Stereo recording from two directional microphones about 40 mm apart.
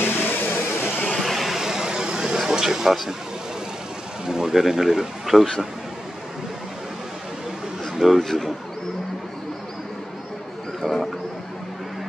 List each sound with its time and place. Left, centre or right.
0.0 s vehicle: left
1.2 s vehicle: centre
1.6 s vehicle: centre
4.3 s speech: centre
7.9 s speech: centre
10.8 s bird: centre